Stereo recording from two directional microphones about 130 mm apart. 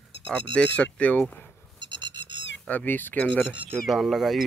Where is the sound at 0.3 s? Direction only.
10° left (ahead or behind).